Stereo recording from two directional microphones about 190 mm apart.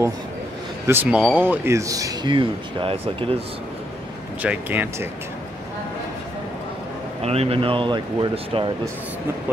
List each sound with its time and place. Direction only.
0.8 s speech: 10° right (ahead or behind); by 3.3 s 30° right (ahead or behind)
4.4 s speech: 10° right (ahead or behind)
7.2 s speech: 30° right (ahead or behind)